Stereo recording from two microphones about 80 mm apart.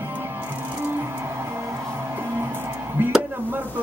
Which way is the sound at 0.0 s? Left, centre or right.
Right.